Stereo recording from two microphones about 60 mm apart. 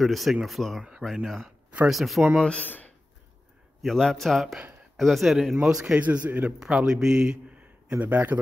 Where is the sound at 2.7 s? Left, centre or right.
Left.